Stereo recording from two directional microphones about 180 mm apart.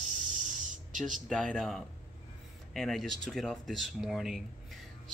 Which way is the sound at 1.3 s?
5° left (ahead or behind).